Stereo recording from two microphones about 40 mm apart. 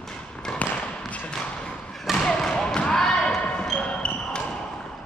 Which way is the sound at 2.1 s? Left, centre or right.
Centre.